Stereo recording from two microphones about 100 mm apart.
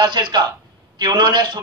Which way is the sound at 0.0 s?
50° right (ahead or behind).